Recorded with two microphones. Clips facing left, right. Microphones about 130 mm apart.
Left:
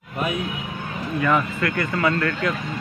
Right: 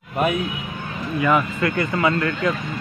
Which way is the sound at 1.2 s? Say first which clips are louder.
Right 2 dB; 10° right (ahead or behind).